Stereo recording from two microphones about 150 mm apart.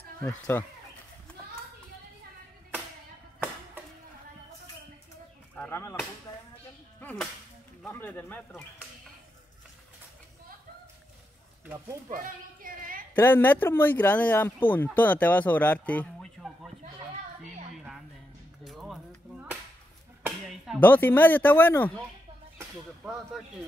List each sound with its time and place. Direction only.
0.2 s speech: 15° left (ahead or behind)
5.6 s whip: 20° left (ahead or behind)
7.9 s speech: 10° left (ahead or behind)
12.1 s a sound: 65° right (ahead or behind)
13.1 s speech: 15° left (ahead or behind)
18.6 s whip: centre (ahead or behind)
20.4 s music: 5° right (ahead or behind)
20.8 s speech: 10° left (ahead or behind)
23.0 s speech: centre (ahead or behind)